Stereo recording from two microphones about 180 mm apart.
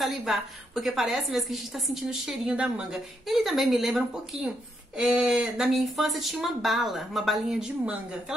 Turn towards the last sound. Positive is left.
turn(degrees=-5)  # may be behind; listen again after turning